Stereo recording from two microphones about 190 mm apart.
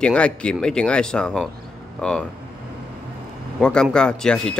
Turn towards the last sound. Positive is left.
turn(degrees=5)  # may be behind; listen again after turning